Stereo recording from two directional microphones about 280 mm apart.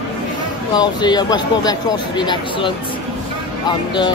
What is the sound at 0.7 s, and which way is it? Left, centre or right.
Speech, centre.